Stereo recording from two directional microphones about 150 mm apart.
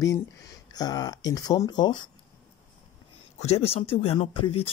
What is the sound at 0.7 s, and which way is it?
Speech, 25° left (ahead or behind).